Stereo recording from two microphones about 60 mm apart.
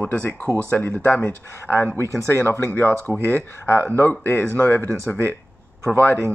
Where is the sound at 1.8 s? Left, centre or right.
Right.